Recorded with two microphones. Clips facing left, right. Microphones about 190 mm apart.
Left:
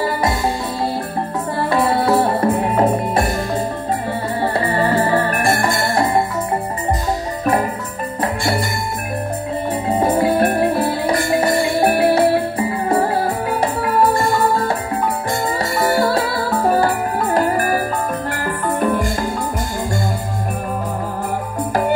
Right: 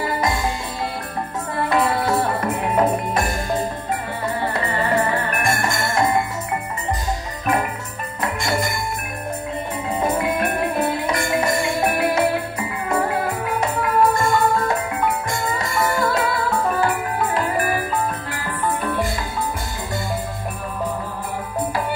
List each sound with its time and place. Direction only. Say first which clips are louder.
1.6 s music: left 2 dB; 30° left (ahead or behind)
4.4 s music: left 7 dB; 30° left (ahead or behind)
8.2 s music: left 3 dB; 30° left (ahead or behind)
9.8 s music: left 5 dB; 35° left (ahead or behind)